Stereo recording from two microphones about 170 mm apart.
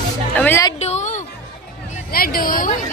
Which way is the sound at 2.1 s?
60° left (ahead or behind).